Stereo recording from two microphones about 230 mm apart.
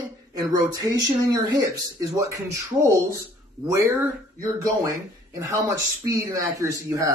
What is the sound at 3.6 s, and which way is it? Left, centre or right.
Speech, centre.